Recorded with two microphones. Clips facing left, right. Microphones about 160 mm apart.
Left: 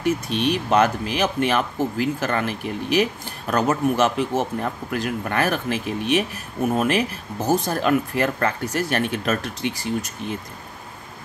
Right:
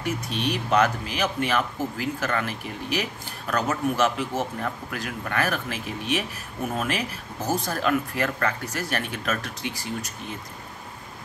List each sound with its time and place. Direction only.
0.0 s speech: 25° left (ahead or behind)